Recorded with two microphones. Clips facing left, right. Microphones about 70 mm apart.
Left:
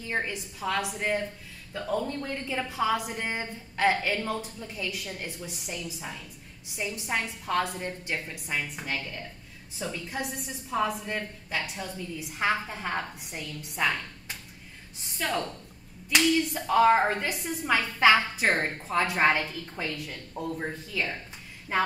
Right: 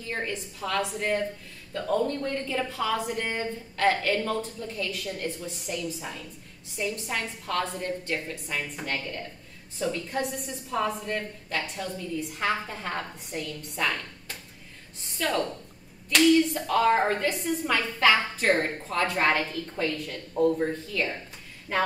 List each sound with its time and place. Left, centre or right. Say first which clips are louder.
0.0 s a woman's voice: left 1 dB; centre
6.8 s a woman's voice: right 1 dB; centre
16.5 s a woman's voice: left 2 dB; centre